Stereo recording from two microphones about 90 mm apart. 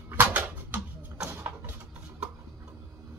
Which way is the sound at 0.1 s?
20° right (ahead or behind).